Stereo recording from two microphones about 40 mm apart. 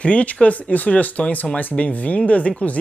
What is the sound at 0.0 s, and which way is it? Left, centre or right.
Speech, left.